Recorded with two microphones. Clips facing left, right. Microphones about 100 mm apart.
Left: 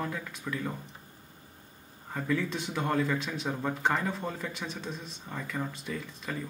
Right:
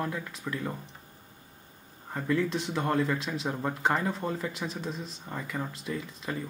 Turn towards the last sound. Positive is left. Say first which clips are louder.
# right 2 dB
turn(degrees=0)  # may be behind; listen again after turning